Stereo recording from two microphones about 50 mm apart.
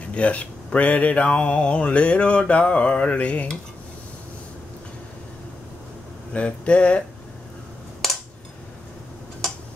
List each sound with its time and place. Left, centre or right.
0.1 s speech: left
0.7 s mantra: left
6.3 s mantra: left